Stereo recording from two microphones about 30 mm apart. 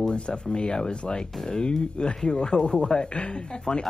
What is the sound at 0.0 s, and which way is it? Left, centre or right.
Speech, left.